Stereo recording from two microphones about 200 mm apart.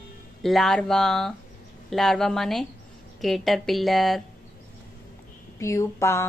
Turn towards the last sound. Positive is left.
turn(degrees=15)  # may be behind; listen again after turning